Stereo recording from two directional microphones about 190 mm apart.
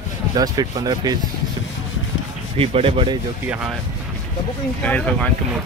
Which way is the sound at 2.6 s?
30° right (ahead or behind).